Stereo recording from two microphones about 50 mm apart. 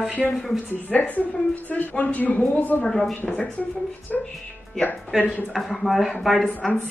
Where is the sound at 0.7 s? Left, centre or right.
Left.